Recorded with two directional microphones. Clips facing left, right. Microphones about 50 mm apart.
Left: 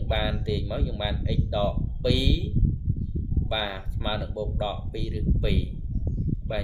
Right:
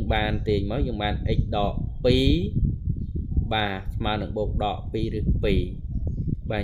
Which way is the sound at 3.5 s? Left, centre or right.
Right.